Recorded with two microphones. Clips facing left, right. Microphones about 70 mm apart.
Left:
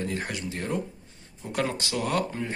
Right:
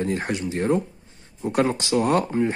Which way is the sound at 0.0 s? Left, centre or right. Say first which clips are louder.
Right 6 dB; right.